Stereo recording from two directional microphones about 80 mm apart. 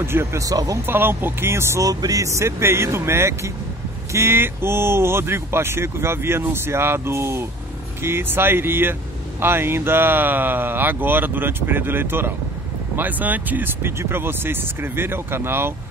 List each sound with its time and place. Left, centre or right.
0.0 s speech: right
0.8 s speech: right
1.9 s speech: right